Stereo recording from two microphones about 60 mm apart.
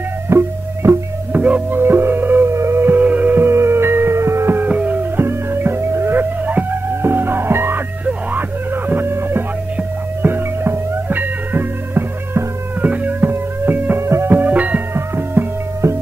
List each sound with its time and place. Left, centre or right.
0.3 s music: right
1.3 s music: right
1.8 s music: right
2.5 s music: right
4.6 s music: right
6.4 s music: right
6.9 s music: right
8.0 s music: right
12.9 s music: right
14.0 s music: right
14.3 s music: right
15.0 s music: right